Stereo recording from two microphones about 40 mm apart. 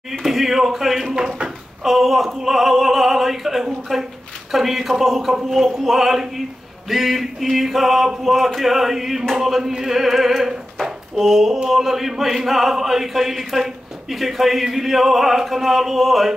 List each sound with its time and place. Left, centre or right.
0.2 s speech: centre
1.1 s speech: right
1.8 s speech: centre
4.5 s a sound: centre
5.5 s speech: centre
9.3 s a sound: centre
11.7 s speech: centre